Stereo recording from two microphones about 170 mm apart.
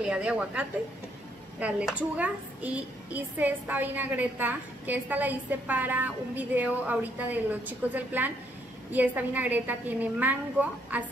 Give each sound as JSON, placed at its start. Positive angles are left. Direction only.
{"t": 0.0, "sound": "a woman's voice", "side_deg": -5}